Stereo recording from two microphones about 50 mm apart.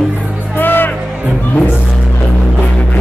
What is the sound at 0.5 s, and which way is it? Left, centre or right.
Music, left.